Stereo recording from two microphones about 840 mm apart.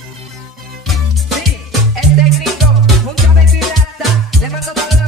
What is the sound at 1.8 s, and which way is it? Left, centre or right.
Music, right.